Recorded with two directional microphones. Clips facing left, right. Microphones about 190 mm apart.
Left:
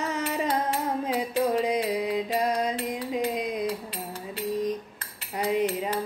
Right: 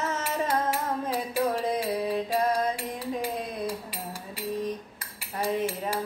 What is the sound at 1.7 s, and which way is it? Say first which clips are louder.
Mantra: left 1 dB; 15° left (ahead or behind).